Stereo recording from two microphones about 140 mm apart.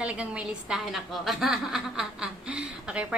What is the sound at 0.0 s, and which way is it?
A woman's voice, 10° right (ahead or behind).